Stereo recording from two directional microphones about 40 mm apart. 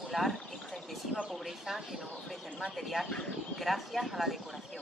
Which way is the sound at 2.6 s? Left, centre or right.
Centre.